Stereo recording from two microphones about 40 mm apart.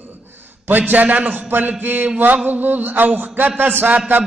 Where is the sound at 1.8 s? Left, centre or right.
Right.